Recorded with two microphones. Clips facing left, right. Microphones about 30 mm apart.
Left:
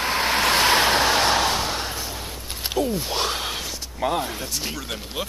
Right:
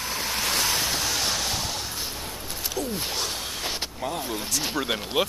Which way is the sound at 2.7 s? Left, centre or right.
Left.